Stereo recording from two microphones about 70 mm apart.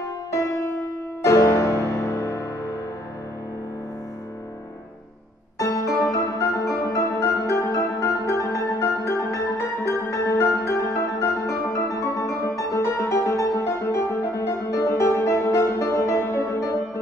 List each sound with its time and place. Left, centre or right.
0.3 s music: left
5.6 s music: left